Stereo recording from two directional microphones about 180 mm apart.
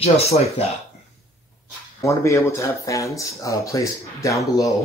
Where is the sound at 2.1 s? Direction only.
15° left (ahead or behind).